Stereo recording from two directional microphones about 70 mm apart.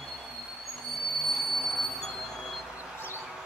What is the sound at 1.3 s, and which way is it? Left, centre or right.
Music, centre.